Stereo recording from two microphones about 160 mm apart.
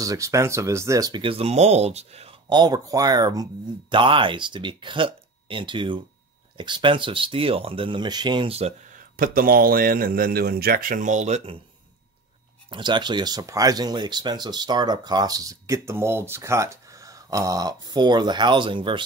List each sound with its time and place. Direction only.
0.0 s speech: 20° right (ahead or behind)
1.2 s speech: 35° right (ahead or behind)
2.5 s speech: 25° right (ahead or behind)
9.1 s a man's voice: 65° right (ahead or behind); by 11.5 s 45° right (ahead or behind)
12.6 s speech: 30° right (ahead or behind)